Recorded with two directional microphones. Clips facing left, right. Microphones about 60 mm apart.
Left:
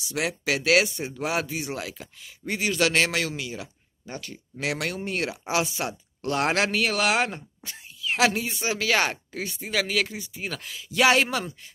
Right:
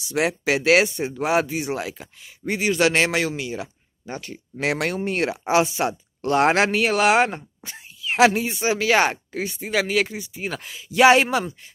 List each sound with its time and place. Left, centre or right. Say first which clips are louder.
0.1 s speech: right 5 dB; right